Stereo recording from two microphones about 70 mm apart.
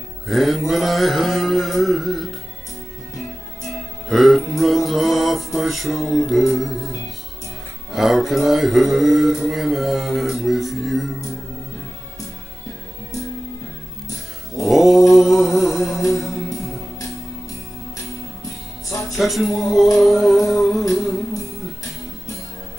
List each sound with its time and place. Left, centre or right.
0.3 s mantra: centre
3.6 s music: centre
7.9 s mantra: centre
14.7 s mantra: centre
18.9 s music: left
19.1 s mantra: centre
20.9 s music: centre